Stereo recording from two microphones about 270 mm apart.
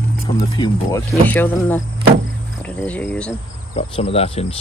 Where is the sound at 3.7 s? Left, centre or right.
Left.